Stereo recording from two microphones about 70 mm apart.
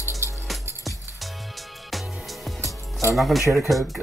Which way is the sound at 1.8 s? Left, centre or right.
Centre.